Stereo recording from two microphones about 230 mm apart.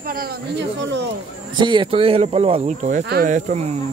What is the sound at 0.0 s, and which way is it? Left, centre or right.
Speech, right.